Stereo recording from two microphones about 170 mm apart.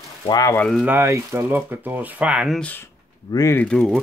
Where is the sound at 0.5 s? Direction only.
5° left (ahead or behind).